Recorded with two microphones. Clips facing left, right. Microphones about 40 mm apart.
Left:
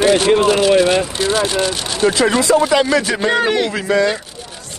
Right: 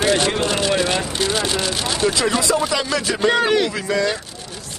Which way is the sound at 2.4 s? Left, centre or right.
Left.